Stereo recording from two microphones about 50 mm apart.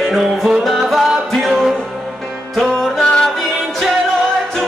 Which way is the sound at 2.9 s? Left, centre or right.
Centre.